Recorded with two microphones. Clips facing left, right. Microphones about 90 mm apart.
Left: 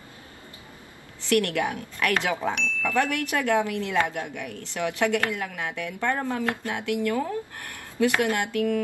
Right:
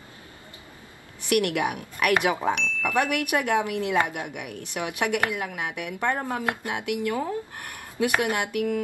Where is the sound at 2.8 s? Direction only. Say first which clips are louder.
Even; 15° right (ahead or behind).